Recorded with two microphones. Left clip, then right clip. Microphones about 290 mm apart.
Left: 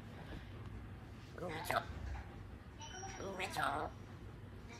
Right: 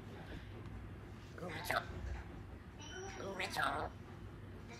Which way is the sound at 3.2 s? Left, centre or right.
Centre.